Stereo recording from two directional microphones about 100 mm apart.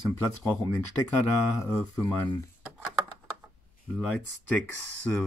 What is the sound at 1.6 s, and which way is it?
Speech, 30° left (ahead or behind).